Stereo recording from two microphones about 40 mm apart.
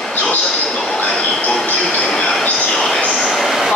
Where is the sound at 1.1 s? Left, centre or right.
Centre.